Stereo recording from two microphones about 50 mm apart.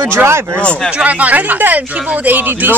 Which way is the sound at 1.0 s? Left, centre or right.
Right.